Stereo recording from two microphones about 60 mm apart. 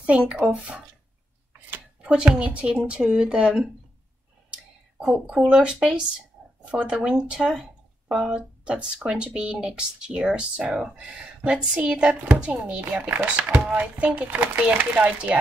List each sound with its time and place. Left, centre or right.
0.0 s speech: centre
2.2 s speech: centre
5.1 s speech: right
15.0 s speech: centre